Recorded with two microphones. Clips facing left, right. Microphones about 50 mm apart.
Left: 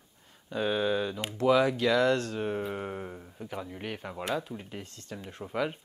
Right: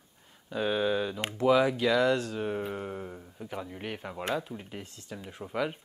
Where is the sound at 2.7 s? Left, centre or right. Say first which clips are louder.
Left 1 dB; centre.